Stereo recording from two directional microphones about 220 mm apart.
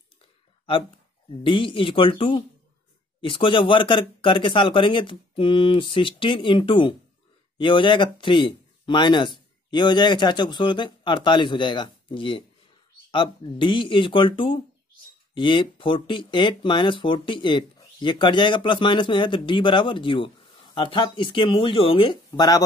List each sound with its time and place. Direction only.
1.4 s speech: 25° left (ahead or behind)